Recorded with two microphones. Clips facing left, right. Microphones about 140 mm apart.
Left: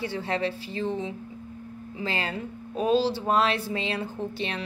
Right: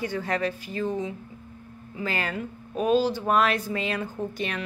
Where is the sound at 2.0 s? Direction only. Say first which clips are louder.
Right 1 dB; 25° left (ahead or behind).